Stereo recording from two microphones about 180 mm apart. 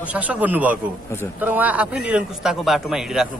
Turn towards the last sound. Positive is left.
turn(degrees=0)  # may be behind; listen again after turning